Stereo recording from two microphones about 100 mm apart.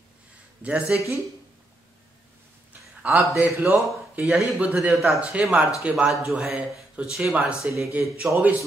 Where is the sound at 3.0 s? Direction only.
25° right (ahead or behind).